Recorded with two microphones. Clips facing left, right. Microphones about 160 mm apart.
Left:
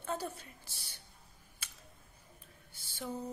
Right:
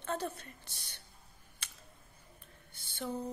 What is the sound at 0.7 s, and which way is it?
Speech, 60° right (ahead or behind).